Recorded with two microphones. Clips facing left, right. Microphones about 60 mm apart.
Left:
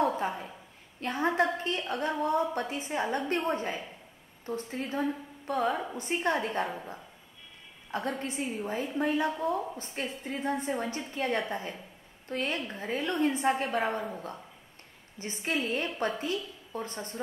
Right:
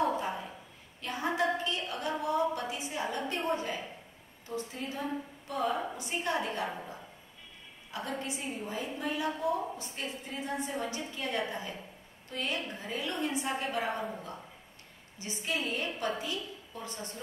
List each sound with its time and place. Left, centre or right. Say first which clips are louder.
0.0 s a sound: left 2 dB; left
1.0 s a woman's voice: left 3 dB; left
7.9 s a woman's voice: left 4 dB; left